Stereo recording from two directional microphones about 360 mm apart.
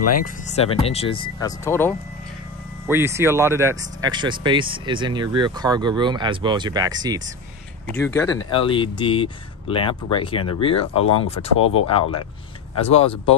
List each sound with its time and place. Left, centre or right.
0.2 s speech: centre
2.9 s speech: centre
8.0 s speech: centre